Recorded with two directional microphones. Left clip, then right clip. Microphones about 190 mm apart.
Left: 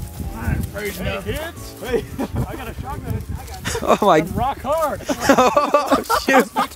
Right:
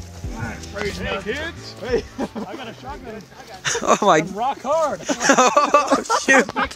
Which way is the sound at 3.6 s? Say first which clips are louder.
Even; 20° left (ahead or behind).